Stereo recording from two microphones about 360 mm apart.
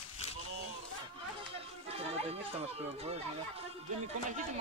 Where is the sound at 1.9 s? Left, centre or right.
Centre.